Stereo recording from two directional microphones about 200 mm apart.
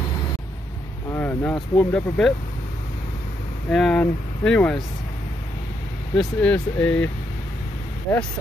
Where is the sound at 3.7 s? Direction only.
5° left (ahead or behind).